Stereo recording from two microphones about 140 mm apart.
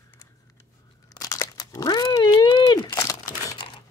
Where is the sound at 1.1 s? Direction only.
25° left (ahead or behind).